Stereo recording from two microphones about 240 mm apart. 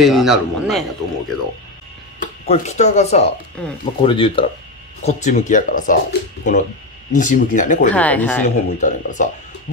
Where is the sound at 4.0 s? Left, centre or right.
Left.